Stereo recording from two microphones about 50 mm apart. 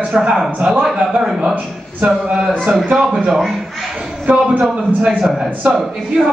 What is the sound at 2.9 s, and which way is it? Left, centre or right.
Speech, centre.